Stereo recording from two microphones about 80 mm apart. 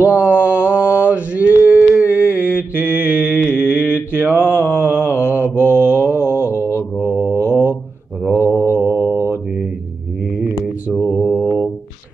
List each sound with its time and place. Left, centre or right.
0.1 s mantra: centre
3.3 s mantra: left
4.1 s mantra: right
4.7 s a sound: right
5.6 s mantra: right
6.4 s mantra: left
7.4 s mantra: right
8.6 s mantra: left
11.0 s mantra: centre
11.3 s mantra: centre